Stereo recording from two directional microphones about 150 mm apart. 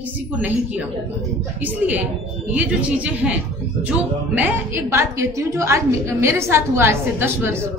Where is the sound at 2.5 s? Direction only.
10° right (ahead or behind).